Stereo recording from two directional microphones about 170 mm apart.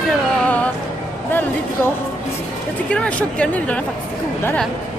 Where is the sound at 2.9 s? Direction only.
5° left (ahead or behind).